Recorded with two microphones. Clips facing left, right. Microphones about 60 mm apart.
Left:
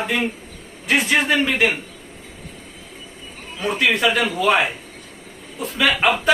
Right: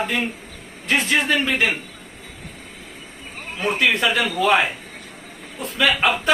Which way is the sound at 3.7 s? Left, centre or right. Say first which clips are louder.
Left 1 dB; centre.